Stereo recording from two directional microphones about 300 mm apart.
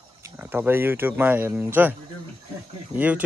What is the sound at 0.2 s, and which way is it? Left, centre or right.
Speech, centre.